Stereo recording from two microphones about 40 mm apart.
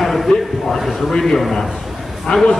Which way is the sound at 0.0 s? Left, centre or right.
Centre.